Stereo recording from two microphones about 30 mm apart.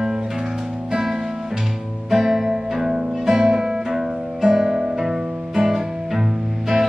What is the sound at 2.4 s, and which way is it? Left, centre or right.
Music, centre.